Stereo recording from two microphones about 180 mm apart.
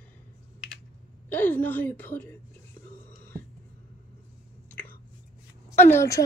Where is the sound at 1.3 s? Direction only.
10° left (ahead or behind).